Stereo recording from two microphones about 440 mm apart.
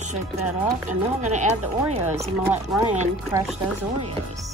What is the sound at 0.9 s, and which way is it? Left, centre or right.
Speech, centre.